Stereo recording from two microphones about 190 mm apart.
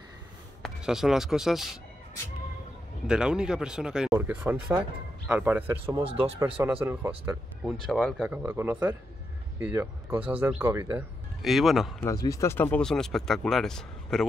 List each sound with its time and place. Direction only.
0.6 s speech: centre (ahead or behind)
3.1 s speech: 5° right (ahead or behind)
6.0 s speech: 30° right (ahead or behind)
6.6 s speech: 10° right (ahead or behind)
7.8 s speech: centre (ahead or behind)
12.0 s speech: 15° left (ahead or behind)